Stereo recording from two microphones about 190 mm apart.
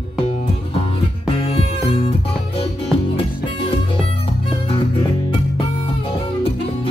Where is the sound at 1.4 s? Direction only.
30° left (ahead or behind).